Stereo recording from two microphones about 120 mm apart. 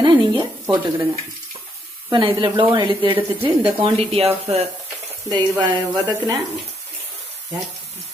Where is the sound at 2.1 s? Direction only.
40° right (ahead or behind).